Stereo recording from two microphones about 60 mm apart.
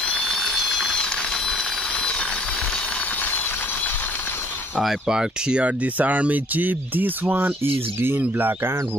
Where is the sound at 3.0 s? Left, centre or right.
Left.